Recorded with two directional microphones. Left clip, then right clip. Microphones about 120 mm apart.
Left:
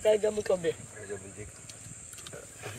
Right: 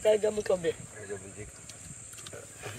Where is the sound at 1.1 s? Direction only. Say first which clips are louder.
Even; 5° right (ahead or behind).